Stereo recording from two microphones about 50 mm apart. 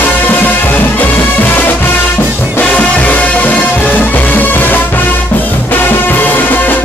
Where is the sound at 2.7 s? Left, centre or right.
Left.